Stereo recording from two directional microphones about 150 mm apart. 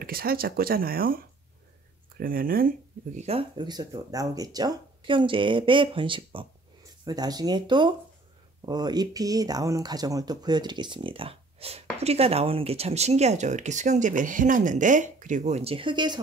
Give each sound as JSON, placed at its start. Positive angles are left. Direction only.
{"t": 0.0, "sound": "speech", "side_deg": -85}
{"t": 3.2, "sound": "speech", "side_deg": -40}